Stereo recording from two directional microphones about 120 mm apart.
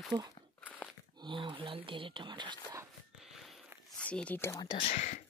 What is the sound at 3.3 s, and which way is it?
Biting, centre (ahead or behind).